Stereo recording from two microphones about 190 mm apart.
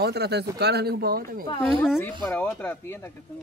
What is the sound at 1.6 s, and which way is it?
Speech, 10° left (ahead or behind).